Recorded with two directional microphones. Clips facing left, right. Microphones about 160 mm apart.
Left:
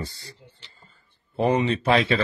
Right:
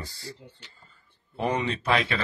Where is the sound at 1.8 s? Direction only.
30° left (ahead or behind).